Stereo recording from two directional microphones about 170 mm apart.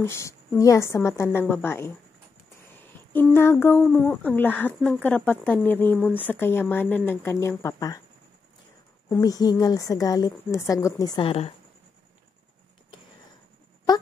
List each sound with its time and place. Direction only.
0.0 s a woman's voice: 15° left (ahead or behind)
2.8 s a sound: 10° left (ahead or behind)
3.3 s a woman's voice: 15° left (ahead or behind)
9.1 s a woman's voice: 20° left (ahead or behind)